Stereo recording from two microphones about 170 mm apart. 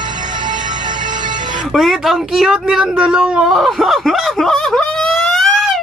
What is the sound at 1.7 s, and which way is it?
Speech, centre (ahead or behind).